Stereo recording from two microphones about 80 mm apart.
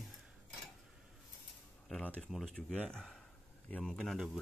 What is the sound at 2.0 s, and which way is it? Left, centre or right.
Speech, centre.